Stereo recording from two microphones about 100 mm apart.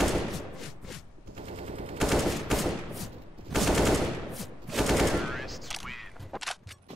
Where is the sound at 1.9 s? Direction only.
Centre (ahead or behind).